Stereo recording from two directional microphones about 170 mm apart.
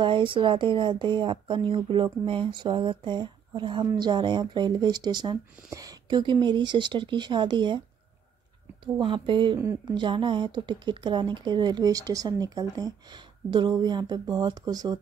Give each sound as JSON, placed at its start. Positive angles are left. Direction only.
{"t": 0.0, "sound": "speech", "side_deg": -30}
{"t": 9.0, "sound": "speech", "side_deg": -30}
{"t": 9.6, "sound": "speech", "side_deg": -15}
{"t": 9.9, "sound": "speech", "side_deg": -30}